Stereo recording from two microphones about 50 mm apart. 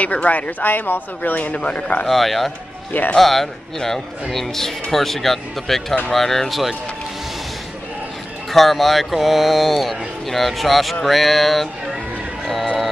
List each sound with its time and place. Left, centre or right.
0.0 s speech: left
2.0 s a man's voice: centre
8.5 s speech: centre
12.4 s music: centre